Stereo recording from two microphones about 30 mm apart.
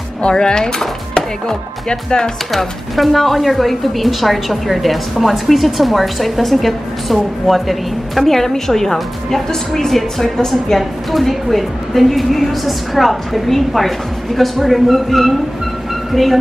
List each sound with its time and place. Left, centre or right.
0.2 s speech: left
1.1 s chopping: left
2.5 s speech: centre
8.3 s a woman's voice: centre
10.2 s a woman's voice: centre
10.8 s speech: centre